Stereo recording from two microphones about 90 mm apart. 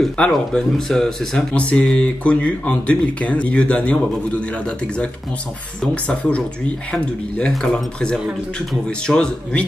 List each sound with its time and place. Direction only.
0.0 s speech: 5° left (ahead or behind)
6.9 s speech: 10° left (ahead or behind)